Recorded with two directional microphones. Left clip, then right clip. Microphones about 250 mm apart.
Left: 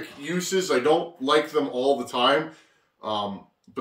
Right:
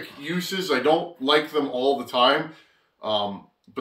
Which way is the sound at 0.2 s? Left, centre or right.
Centre.